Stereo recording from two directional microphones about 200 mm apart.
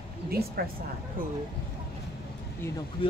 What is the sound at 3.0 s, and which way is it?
Speech, 25° left (ahead or behind).